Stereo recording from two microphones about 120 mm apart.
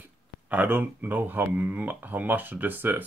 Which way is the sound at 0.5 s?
15° right (ahead or behind).